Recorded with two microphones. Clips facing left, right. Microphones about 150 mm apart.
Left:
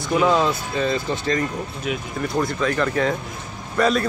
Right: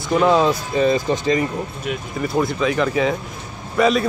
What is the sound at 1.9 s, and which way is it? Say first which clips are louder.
A man's voice: even; centre (ahead or behind).